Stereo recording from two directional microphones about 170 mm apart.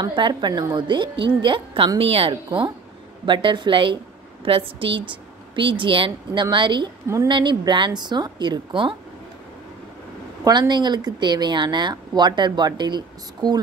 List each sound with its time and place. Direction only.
0.0 s a woman's voice: 25° right (ahead or behind)
10.4 s speech: 25° right (ahead or behind)